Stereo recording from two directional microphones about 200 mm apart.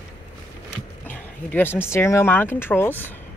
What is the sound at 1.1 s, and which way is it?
Speech, 10° left (ahead or behind).